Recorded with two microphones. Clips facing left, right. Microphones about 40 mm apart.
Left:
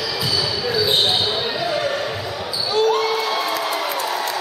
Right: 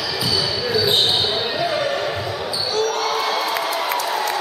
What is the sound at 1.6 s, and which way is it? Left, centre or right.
Basketball bounce, centre.